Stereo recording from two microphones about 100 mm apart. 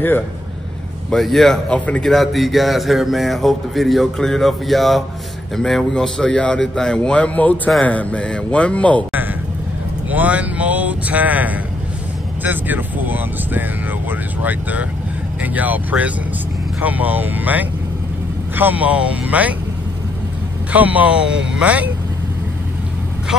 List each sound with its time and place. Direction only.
1.1 s a man's voice: centre (ahead or behind)
10.0 s speech: 15° right (ahead or behind)
20.7 s speech: 15° right (ahead or behind)